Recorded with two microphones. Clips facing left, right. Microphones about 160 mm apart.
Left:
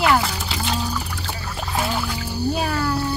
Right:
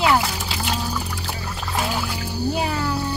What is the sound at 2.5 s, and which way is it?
Speech, 15° right (ahead or behind).